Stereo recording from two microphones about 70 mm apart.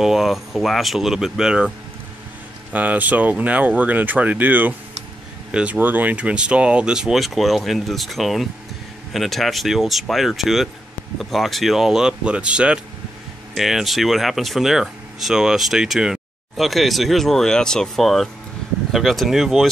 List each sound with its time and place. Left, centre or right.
0.0 s speech: centre
2.7 s speech: right
5.5 s speech: centre
13.6 s speech: centre